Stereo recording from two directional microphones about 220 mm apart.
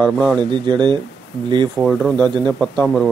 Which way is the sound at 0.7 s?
20° right (ahead or behind).